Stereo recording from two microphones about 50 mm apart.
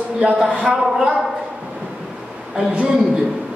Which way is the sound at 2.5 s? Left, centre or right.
Centre.